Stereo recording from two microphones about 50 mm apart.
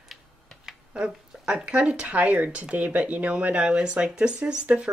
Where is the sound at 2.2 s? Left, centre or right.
Right.